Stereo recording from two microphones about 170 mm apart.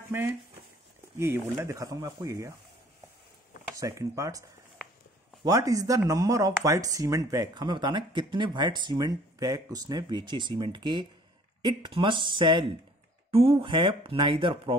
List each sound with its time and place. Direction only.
0.1 s speech: 10° right (ahead or behind)
3.7 s speech: 20° right (ahead or behind)